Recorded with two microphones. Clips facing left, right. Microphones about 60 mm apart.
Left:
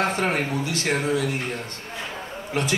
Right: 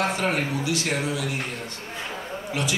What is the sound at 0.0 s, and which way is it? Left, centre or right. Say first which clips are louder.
Speech: left 1 dB; left.